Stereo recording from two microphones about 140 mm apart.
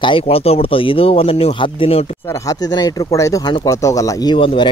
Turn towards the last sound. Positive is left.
turn(degrees=35)  # may be behind; listen again after turning